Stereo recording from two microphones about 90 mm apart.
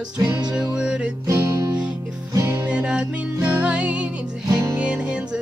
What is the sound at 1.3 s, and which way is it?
Music, 35° right (ahead or behind).